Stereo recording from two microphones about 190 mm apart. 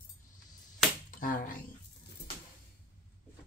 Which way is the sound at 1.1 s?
45° left (ahead or behind).